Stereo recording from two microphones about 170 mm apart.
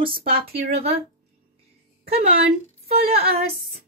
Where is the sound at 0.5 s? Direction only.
70° right (ahead or behind).